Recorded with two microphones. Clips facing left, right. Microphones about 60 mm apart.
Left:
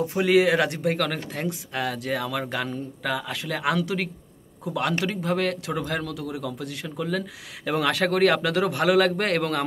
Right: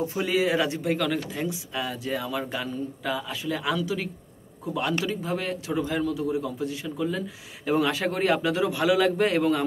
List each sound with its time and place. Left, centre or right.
0.1 s speech: left
4.7 s a man's voice: left